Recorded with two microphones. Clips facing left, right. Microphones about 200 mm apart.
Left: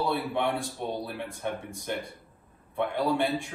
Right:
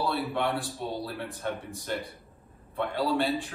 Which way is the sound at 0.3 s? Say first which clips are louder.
Left 1 dB; 15° left (ahead or behind).